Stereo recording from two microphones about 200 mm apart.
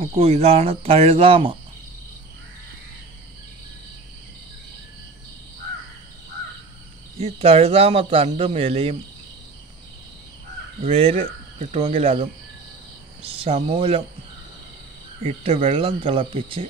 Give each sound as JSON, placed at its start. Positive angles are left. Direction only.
{"t": 0.0, "sound": "speech", "side_deg": -30}
{"t": 7.2, "sound": "speech", "side_deg": -30}
{"t": 10.8, "sound": "speech", "side_deg": -30}
{"t": 15.2, "sound": "speech", "side_deg": -30}